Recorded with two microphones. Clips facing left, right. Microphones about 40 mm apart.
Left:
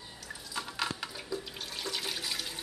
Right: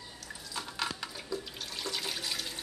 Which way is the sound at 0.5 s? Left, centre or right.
Centre.